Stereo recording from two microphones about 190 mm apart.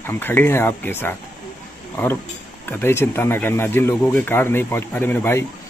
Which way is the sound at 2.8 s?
10° left (ahead or behind).